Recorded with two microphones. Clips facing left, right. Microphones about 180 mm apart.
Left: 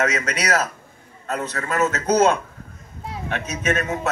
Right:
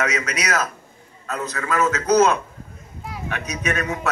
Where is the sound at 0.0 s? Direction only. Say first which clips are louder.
Left 1 dB; 30° left (ahead or behind).